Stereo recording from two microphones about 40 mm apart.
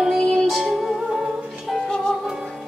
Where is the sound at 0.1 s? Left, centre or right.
Centre.